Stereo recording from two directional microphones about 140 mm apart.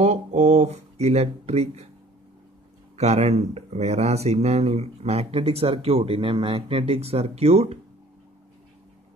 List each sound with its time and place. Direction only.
0.0 s speech: 50° right (ahead or behind)
3.0 s speech: 50° right (ahead or behind)